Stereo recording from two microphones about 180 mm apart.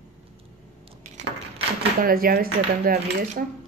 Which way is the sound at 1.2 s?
40° right (ahead or behind).